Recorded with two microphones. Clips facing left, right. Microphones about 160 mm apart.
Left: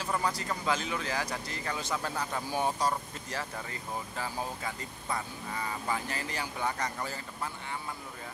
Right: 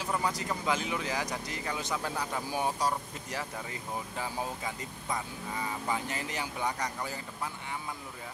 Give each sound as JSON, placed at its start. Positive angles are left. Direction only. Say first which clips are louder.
{"t": 0.0, "sound": "speech", "louder": "even", "side_deg": -15}